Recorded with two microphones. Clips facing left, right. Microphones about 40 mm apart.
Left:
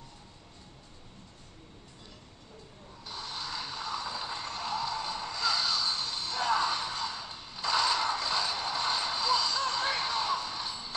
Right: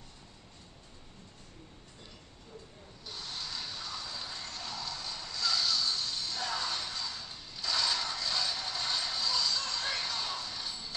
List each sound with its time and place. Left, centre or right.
3.1 s music: left